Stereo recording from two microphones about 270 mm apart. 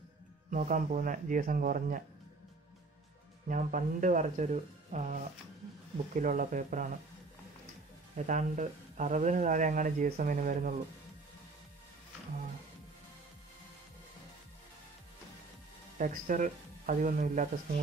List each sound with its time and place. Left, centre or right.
0.5 s speech: right
3.4 s speech: right
8.3 s speech: right
16.0 s speech: right